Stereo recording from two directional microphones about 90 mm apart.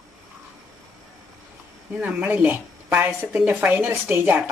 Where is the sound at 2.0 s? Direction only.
15° right (ahead or behind).